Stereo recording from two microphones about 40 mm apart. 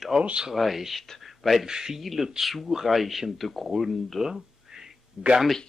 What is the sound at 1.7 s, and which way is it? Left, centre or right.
Speech, centre.